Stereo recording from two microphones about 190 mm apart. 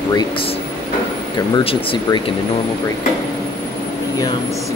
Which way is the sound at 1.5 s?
30° left (ahead or behind).